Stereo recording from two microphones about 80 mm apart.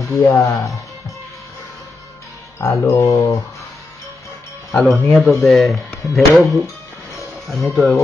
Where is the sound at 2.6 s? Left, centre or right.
Left.